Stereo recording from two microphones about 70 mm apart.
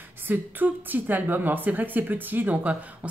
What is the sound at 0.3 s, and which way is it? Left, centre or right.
A woman's voice, right.